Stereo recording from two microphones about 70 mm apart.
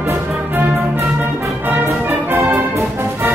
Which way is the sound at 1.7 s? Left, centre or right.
Right.